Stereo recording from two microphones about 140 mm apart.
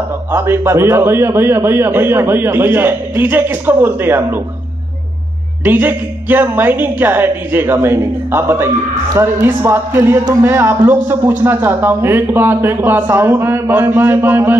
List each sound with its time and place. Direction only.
0.3 s a woman's voice: 15° right (ahead or behind)
5.6 s a woman's voice: 15° right (ahead or behind)